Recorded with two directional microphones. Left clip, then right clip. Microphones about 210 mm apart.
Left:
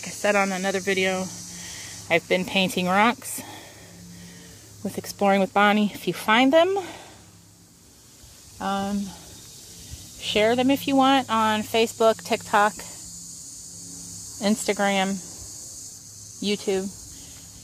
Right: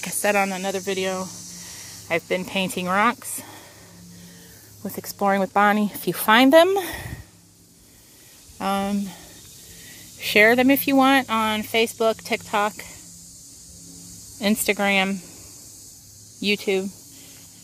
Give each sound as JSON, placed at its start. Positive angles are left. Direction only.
{"t": 0.2, "sound": "speech", "side_deg": -10}
{"t": 4.8, "sound": "speech", "side_deg": 0}
{"t": 8.5, "sound": "speech", "side_deg": -30}
{"t": 10.2, "sound": "speech", "side_deg": -30}
{"t": 14.4, "sound": "speech", "side_deg": -15}
{"t": 16.3, "sound": "speech", "side_deg": -15}